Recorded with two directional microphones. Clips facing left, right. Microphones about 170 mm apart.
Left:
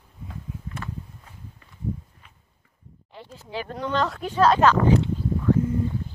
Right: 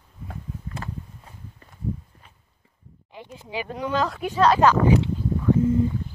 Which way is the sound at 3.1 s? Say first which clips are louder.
Right 1 dB; 15° right (ahead or behind).